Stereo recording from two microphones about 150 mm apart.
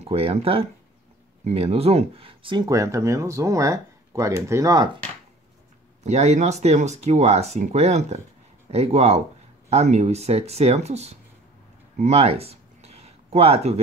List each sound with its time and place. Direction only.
0.0 s speech: 40° right (ahead or behind); by 4.8 s 20° right (ahead or behind)
6.0 s speech: 50° right (ahead or behind)
12.0 s a sound: 45° right (ahead or behind)